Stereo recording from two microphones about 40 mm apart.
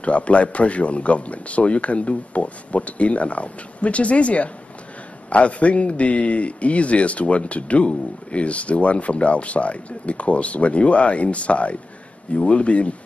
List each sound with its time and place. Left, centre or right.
0.0 s a man's voice: left